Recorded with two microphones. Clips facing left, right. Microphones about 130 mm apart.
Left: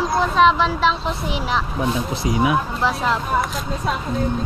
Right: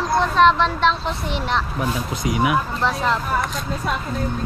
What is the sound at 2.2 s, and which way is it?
Speech, 30° left (ahead or behind).